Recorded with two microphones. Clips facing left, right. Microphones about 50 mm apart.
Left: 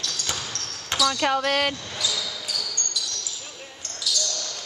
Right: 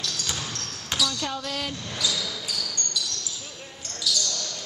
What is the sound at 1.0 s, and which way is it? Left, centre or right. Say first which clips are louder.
Speech: left 9 dB; left.